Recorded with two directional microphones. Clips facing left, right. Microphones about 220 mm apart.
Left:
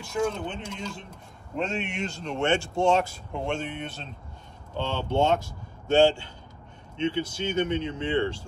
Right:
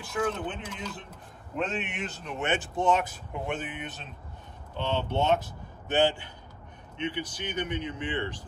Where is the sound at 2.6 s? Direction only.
25° left (ahead or behind).